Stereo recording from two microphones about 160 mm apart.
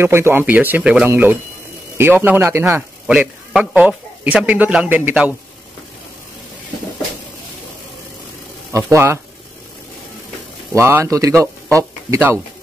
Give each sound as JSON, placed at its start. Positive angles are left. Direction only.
{"t": 0.0, "sound": "a man's voice", "side_deg": -15}
{"t": 3.1, "sound": "a man's voice", "side_deg": -5}
{"t": 8.8, "sound": "a man's voice", "side_deg": -15}
{"t": 10.7, "sound": "speech", "side_deg": -15}